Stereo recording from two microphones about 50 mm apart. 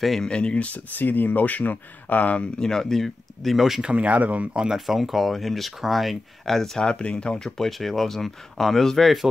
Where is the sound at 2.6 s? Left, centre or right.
Centre.